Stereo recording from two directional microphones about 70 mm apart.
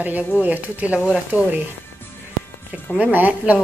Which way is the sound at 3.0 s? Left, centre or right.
Right.